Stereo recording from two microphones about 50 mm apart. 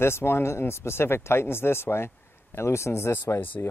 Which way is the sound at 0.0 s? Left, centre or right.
Left.